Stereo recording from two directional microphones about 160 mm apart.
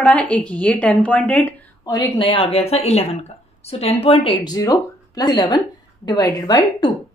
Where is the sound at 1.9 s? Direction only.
30° left (ahead or behind).